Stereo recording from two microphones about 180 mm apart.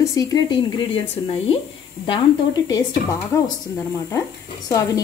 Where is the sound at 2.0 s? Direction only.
25° left (ahead or behind).